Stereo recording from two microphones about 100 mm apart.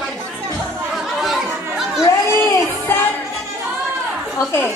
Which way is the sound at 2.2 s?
30° left (ahead or behind).